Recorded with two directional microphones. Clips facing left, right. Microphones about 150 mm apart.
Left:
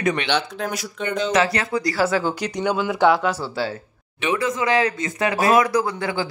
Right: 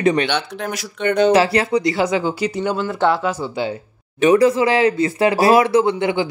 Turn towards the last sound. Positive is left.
turn(degrees=-20)  # may be behind; listen again after turning